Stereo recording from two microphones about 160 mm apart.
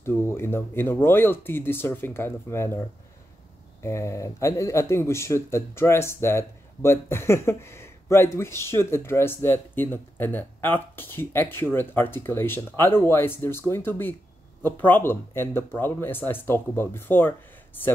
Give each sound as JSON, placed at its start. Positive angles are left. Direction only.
{"t": 0.0, "sound": "a man's voice", "side_deg": 15}
{"t": 3.8, "sound": "a man's voice", "side_deg": 15}